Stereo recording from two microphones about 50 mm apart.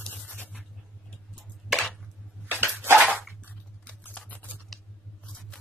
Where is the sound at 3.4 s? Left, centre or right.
Left.